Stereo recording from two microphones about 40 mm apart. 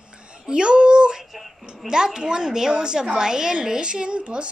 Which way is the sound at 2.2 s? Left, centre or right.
Centre.